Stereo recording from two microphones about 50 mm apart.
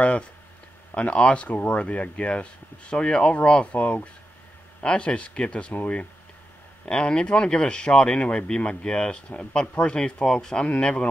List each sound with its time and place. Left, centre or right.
0.9 s speech: left
3.7 s speech: left
4.8 s speech: left
6.9 s speech: centre